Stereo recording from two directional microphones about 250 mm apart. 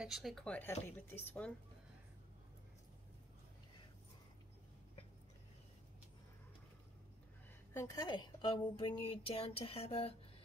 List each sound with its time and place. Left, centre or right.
0.0 s speech: centre
7.7 s a woman's voice: centre